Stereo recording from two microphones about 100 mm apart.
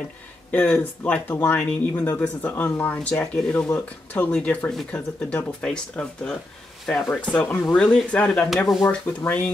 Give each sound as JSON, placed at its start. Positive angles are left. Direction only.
{"t": 0.5, "sound": "speech", "side_deg": 15}